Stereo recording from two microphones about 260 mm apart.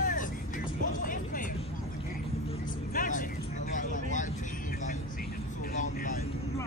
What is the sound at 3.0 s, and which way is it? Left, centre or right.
Vehicle, left.